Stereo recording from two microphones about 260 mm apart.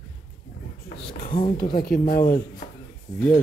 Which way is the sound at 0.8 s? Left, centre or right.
Left.